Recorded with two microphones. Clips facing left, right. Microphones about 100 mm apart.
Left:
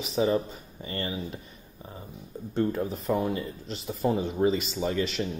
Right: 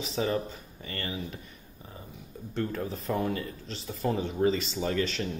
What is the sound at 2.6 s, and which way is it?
Speech, 20° left (ahead or behind).